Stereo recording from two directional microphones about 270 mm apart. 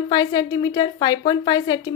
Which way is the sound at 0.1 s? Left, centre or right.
Centre.